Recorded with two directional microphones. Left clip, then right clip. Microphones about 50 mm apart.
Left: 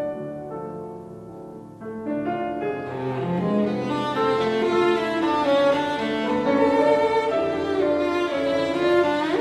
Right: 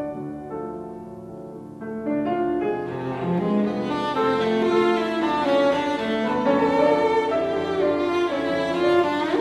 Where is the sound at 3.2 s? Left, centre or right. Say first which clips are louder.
Even; centre.